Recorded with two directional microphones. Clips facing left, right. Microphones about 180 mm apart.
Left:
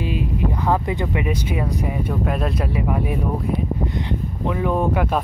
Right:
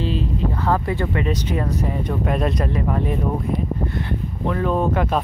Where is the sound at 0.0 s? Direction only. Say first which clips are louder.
Even; 10° left (ahead or behind).